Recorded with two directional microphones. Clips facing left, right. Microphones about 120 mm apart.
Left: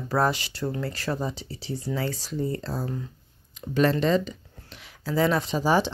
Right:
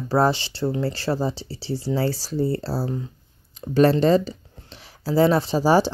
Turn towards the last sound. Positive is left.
turn(degrees=-35)  # may be behind; listen again after turning